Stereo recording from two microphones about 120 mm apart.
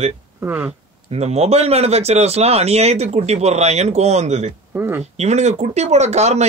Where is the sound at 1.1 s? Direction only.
65° right (ahead or behind).